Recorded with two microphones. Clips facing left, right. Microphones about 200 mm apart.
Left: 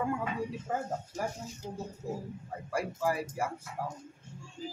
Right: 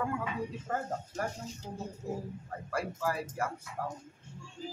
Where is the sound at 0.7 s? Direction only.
10° left (ahead or behind).